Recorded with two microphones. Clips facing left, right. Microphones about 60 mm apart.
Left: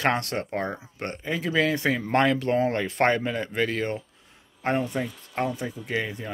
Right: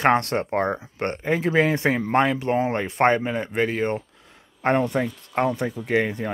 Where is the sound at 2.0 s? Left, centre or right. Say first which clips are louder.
Right 2 dB; centre.